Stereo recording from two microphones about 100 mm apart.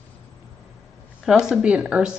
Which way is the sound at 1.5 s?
10° right (ahead or behind).